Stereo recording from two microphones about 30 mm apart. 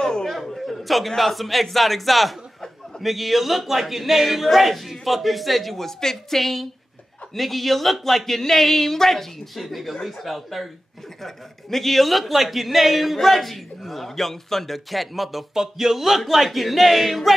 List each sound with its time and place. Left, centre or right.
0.0 s a sound: centre
0.6 s a man's voice: centre
5.9 s speech: centre
6.4 s a man's voice: centre
9.6 s a man's voice: centre
15.5 s a man's voice: centre